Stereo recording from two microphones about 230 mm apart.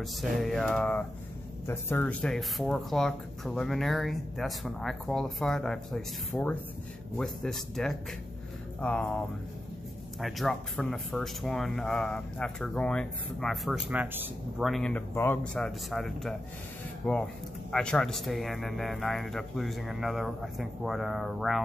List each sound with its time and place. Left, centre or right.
0.0 s speech: centre
10.2 s speech: centre